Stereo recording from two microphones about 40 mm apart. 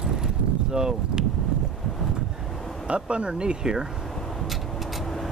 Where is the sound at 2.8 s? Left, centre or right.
Right.